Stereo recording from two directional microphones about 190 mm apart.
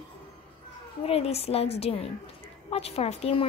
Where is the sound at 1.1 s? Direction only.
30° left (ahead or behind).